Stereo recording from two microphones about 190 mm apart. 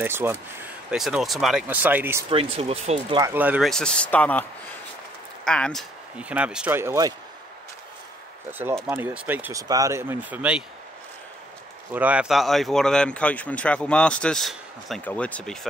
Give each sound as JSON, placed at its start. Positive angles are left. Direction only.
{"t": 0.0, "sound": "speech", "side_deg": -10}
{"t": 2.2, "sound": "speech", "side_deg": -30}
{"t": 3.2, "sound": "speech", "side_deg": -10}
{"t": 8.5, "sound": "speech", "side_deg": -10}
{"t": 11.9, "sound": "speech", "side_deg": -10}